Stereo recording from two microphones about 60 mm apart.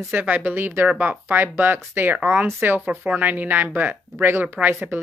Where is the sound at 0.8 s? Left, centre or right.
Right.